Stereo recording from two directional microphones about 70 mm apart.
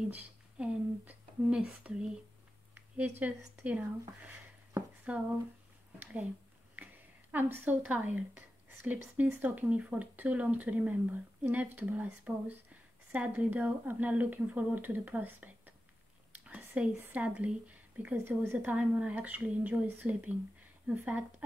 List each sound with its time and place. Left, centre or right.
0.6 s speech: centre
2.7 s speech: right
5.1 s speech: centre
6.7 s speech: right
16.4 s a sound: centre
17.0 s speech: right